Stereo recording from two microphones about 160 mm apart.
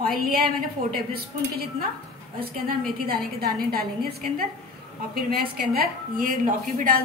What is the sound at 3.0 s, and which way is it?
Speech, 70° right (ahead or behind).